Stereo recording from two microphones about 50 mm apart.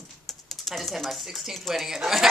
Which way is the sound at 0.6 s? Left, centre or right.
Centre.